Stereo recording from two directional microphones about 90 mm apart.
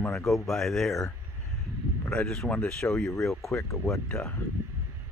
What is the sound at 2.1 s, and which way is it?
A man's voice, 5° left (ahead or behind).